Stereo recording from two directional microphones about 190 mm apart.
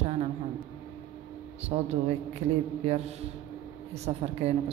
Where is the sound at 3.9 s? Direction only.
35° right (ahead or behind).